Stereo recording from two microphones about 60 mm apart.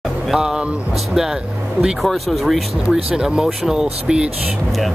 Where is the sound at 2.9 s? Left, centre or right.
Centre.